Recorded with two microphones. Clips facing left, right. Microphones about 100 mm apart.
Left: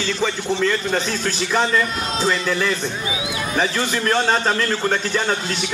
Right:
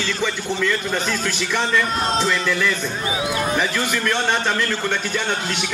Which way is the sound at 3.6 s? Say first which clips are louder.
Left 1 dB; 30° left (ahead or behind).